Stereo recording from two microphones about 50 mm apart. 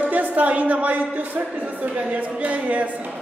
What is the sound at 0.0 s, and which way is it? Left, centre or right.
A woman's voice, right.